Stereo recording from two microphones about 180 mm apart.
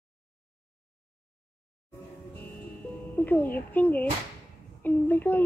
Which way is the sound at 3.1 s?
10° left (ahead or behind).